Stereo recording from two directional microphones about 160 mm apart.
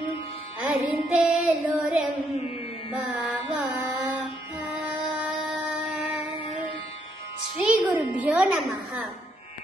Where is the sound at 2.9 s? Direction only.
5° right (ahead or behind).